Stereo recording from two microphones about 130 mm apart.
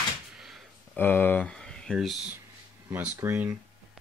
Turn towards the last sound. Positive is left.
turn(degrees=-15)  # may be behind; listen again after turning